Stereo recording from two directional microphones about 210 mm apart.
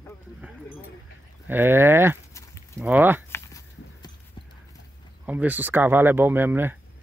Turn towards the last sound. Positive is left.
turn(degrees=-10)  # may be behind; listen again after turning